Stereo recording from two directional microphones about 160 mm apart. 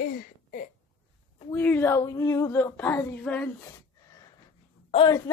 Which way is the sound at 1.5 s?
10° left (ahead or behind).